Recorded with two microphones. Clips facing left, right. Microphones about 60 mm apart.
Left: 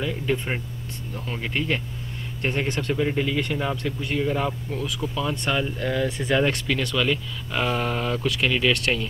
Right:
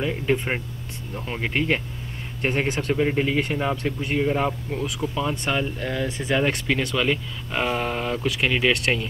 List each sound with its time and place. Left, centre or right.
0.0 s speech: right